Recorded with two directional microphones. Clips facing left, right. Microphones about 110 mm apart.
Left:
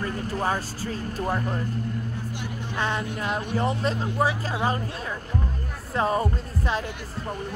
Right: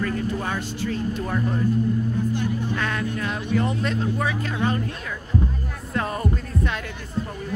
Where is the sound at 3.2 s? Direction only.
25° left (ahead or behind).